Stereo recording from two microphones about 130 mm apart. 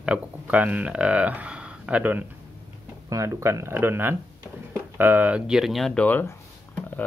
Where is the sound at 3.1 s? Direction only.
25° right (ahead or behind); by 6.2 s 10° left (ahead or behind).